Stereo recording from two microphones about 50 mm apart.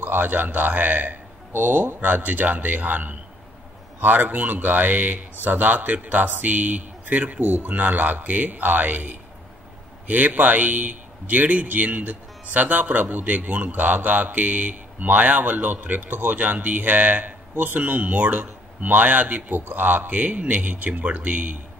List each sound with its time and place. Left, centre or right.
0.0 s a man's voice: right